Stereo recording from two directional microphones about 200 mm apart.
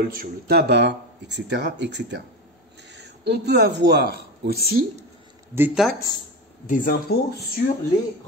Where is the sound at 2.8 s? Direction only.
60° right (ahead or behind).